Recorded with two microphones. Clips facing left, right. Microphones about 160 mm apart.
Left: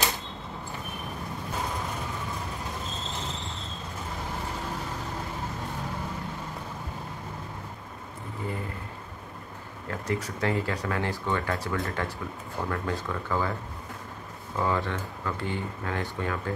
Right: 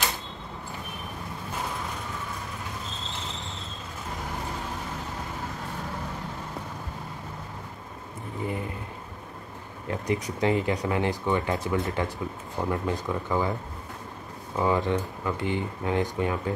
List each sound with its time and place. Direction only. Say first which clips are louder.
9.8 s speech: right 3 dB; 15° right (ahead or behind)
14.6 s speech: right 4 dB; 15° right (ahead or behind)